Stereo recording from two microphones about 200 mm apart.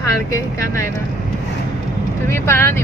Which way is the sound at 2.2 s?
15° left (ahead or behind).